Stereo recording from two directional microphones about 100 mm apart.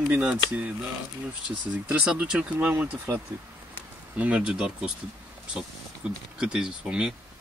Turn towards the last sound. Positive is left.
turn(degrees=-10)  # may be behind; listen again after turning